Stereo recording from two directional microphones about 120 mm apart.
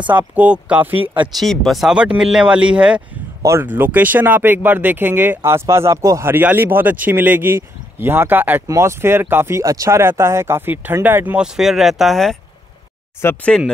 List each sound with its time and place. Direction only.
0.1 s speech: 15° right (ahead or behind)
1.4 s speech: centre (ahead or behind)
3.4 s speech: 20° right (ahead or behind); by 12.4 s centre (ahead or behind)
13.2 s speech: 20° left (ahead or behind)